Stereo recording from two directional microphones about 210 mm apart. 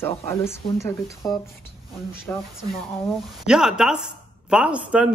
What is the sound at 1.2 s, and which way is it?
Speech, 15° left (ahead or behind).